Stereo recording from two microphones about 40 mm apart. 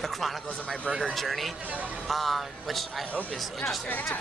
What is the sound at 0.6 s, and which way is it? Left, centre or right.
Speech, left.